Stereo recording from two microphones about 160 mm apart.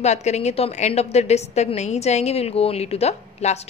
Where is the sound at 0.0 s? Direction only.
45° left (ahead or behind).